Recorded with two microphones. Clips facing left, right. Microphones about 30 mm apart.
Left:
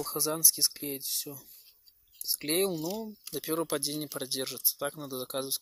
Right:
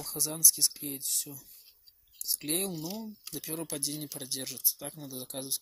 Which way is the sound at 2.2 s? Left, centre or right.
Left.